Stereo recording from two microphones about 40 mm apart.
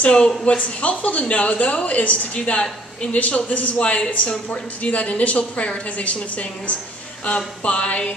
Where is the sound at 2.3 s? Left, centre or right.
Left.